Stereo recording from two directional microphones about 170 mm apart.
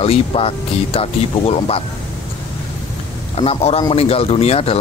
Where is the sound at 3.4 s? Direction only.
35° left (ahead or behind).